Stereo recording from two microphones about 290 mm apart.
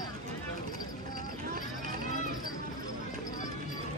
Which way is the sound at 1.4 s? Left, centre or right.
Right.